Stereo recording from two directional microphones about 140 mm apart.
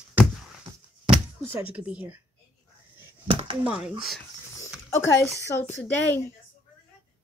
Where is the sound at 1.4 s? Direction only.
10° right (ahead or behind).